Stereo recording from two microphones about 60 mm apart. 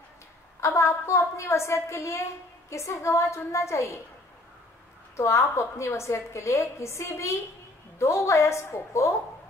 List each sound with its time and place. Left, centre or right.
0.6 s a woman's voice: left
5.1 s a woman's voice: left